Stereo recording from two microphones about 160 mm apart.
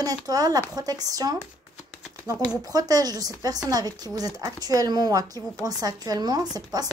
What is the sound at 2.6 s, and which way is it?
A woman's voice, 25° right (ahead or behind).